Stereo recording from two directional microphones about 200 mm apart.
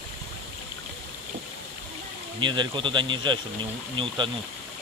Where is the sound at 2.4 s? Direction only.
20° right (ahead or behind).